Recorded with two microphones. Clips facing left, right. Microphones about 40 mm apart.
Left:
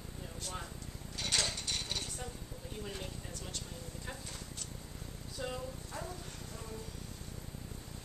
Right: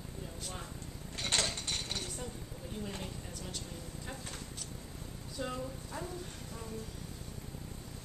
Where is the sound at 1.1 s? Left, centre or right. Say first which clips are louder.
Right 1 dB; right.